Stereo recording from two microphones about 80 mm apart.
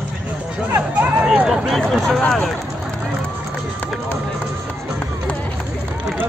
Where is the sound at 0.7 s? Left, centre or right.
Right.